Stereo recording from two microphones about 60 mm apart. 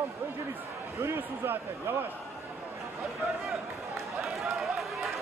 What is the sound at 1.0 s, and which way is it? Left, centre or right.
Speech, right.